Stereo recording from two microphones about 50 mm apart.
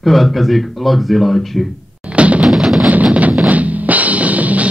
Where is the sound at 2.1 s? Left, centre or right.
Right.